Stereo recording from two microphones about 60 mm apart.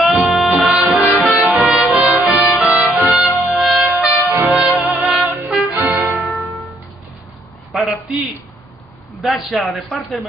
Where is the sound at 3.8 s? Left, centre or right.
Right.